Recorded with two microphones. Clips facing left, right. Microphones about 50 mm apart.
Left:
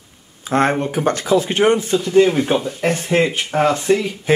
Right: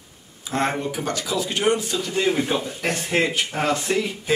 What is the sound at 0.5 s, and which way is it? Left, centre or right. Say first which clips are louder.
A man's voice: left 7 dB; left.